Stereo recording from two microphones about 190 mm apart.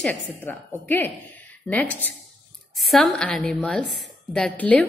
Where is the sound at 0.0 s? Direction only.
10° left (ahead or behind).